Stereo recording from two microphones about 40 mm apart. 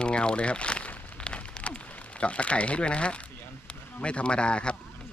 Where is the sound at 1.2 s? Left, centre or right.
Left.